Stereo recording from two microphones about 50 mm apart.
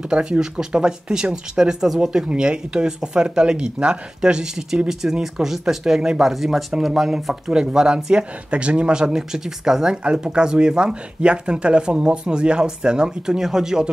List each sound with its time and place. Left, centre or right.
0.1 s speech: centre